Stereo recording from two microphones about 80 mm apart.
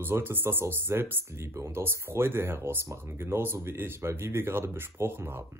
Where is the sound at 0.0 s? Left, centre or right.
Right.